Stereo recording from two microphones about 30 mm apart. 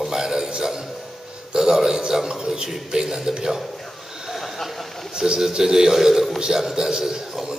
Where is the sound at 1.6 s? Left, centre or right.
Centre.